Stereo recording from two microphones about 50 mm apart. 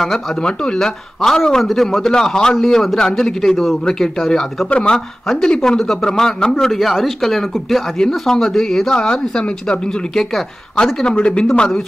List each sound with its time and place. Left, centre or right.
0.0 s speech: centre
0.4 s a man's voice: centre
4.6 s speech: centre
5.2 s a man's voice: centre
8.9 s a man's voice: centre
11.1 s speech: left